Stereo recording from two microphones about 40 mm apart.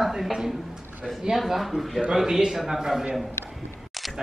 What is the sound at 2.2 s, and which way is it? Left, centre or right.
Speech, centre.